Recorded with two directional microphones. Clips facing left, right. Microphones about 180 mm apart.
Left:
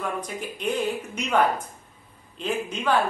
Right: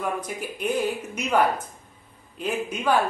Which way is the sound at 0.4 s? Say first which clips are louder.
Right 1 dB; 10° right (ahead or behind).